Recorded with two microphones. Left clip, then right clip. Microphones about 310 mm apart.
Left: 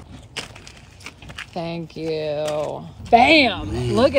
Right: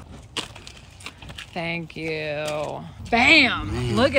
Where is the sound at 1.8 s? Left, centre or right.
Centre.